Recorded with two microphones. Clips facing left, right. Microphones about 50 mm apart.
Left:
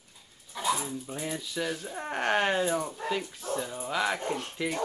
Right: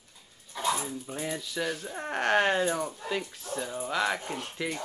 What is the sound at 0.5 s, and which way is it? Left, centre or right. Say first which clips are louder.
Speech: even; centre.